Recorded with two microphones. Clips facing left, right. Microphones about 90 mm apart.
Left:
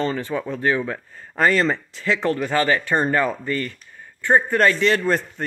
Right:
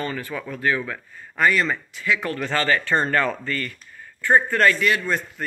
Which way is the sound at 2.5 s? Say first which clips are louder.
Right 1 dB; 20° left (ahead or behind).